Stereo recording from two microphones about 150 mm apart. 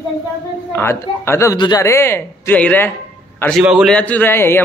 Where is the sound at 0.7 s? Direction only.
15° left (ahead or behind).